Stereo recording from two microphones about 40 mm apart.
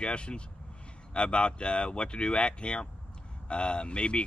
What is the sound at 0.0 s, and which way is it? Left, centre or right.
Speech, left.